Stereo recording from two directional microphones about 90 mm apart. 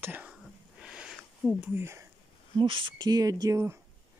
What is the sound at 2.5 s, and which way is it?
Speech, 70° right (ahead or behind).